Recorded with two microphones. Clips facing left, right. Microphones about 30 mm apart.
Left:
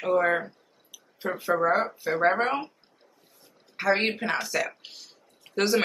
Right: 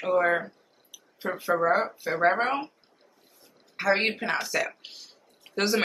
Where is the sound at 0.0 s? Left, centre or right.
Centre.